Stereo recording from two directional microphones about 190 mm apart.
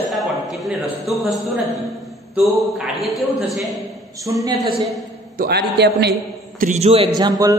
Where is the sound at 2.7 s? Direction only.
Centre (ahead or behind).